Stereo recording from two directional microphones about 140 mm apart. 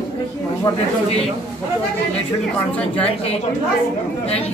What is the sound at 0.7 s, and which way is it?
Speech, 25° left (ahead or behind).